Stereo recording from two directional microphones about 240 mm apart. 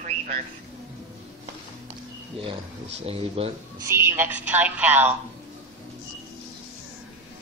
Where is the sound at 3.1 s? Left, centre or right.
Right.